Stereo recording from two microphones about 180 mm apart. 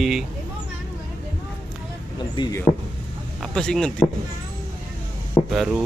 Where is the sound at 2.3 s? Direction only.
25° left (ahead or behind).